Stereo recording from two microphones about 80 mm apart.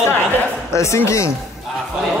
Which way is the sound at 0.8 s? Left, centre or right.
Left.